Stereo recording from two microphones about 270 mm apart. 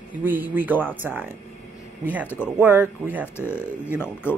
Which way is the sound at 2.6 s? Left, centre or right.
Centre.